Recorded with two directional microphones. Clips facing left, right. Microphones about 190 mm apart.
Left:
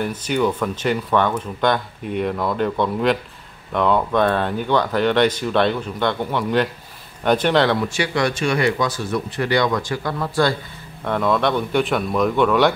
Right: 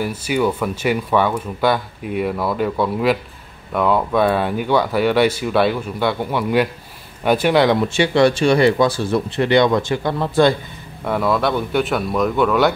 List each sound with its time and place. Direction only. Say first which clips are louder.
0.0 s speech: right 1 dB; 10° right (ahead or behind)
7.9 s speech: right 6 dB; 25° right (ahead or behind)
11.1 s speech: right 1 dB; 5° right (ahead or behind)